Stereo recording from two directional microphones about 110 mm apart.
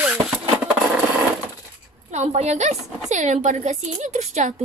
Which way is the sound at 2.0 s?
85° right.